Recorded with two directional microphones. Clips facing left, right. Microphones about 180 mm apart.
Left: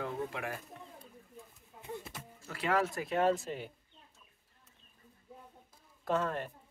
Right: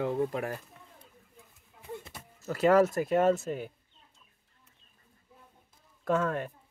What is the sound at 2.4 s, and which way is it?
Speech, 40° right (ahead or behind).